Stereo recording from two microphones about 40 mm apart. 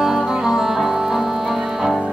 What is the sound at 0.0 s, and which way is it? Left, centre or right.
Music, centre.